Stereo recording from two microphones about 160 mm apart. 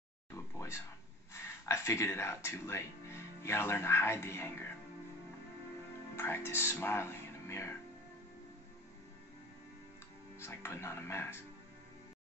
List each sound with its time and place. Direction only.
0.3 s a sound: 15° left (ahead or behind)
1.3 s speech: 15° left (ahead or behind)
6.1 s speech: 15° left (ahead or behind)
10.4 s speech: 15° left (ahead or behind)